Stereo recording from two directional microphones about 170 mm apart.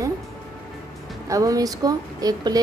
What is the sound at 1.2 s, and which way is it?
A woman's voice, 20° right (ahead or behind).